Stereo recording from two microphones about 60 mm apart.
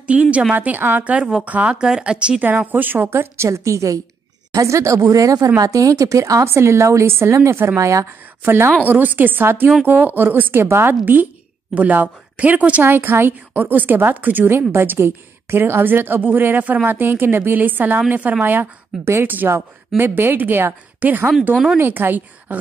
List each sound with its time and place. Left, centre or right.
0.0 s speech: right
2.4 s a woman's voice: right
3.4 s speech: right
6.4 s a woman's voice: right
8.5 s a woman's voice: right
8.8 s a woman's voice: right
12.8 s a woman's voice: right